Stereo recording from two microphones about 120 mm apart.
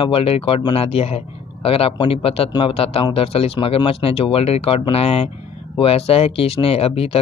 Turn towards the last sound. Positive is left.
turn(degrees=55)  # may be behind; listen again after turning